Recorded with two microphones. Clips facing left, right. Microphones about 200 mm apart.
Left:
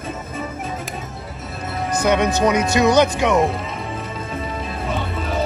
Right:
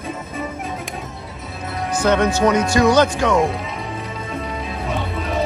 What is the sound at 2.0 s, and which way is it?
Speech, 15° left (ahead or behind).